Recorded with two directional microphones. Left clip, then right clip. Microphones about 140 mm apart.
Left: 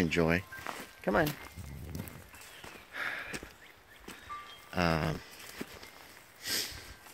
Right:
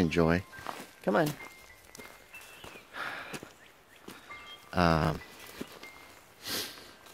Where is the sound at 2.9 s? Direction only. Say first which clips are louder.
Left 1 dB; 20° right (ahead or behind).